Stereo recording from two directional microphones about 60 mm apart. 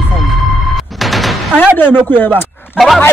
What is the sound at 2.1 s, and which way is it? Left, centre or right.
Speech, left.